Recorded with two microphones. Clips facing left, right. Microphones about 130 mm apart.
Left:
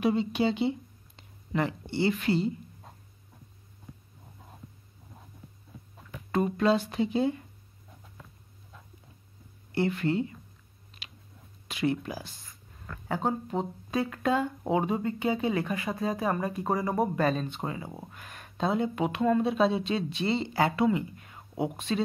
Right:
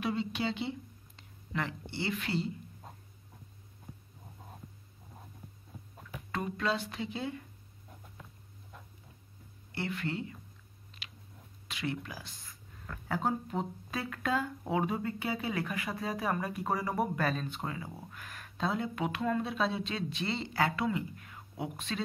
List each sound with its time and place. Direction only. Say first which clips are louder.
0.0 s speech: left 7 dB; 25° left (ahead or behind)
2.0 s speech: left 8 dB; 35° left (ahead or behind)
6.3 s speech: left 9 dB; 30° left (ahead or behind)
9.8 s speech: left 9 dB; 30° left (ahead or behind)
11.7 s speech: left 8 dB; 25° left (ahead or behind)
13.1 s speech: left 3 dB; 15° left (ahead or behind)